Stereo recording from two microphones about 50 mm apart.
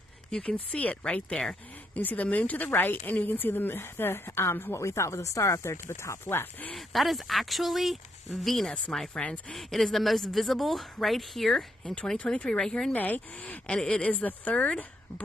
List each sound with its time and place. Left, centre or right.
0.4 s speech: left
1.0 s speech: centre
2.0 s speech: left
4.7 s speech: left
6.7 s a woman's voice: centre
11.8 s speech: left
12.4 s speech: centre
12.9 s speech: left
13.4 s speech: centre
14.2 s speech: left